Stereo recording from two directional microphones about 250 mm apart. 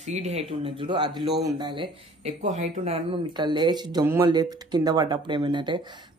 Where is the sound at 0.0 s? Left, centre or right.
Right.